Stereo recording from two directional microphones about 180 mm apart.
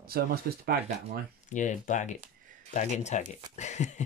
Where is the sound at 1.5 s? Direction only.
45° left (ahead or behind).